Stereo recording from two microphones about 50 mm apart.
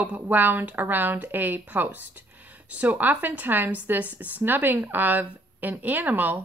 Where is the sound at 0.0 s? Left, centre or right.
Right.